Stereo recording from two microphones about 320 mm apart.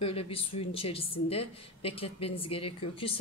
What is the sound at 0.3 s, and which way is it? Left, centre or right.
A woman's voice, centre.